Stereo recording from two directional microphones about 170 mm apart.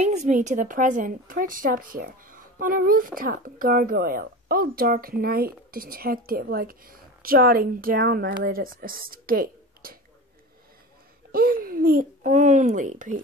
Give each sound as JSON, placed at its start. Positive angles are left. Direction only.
{"t": 0.0, "sound": "a woman's voice", "side_deg": -40}
{"t": 11.3, "sound": "a child's voice", "side_deg": -60}